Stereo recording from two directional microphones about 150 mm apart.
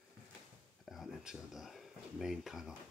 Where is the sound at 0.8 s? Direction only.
Centre (ahead or behind).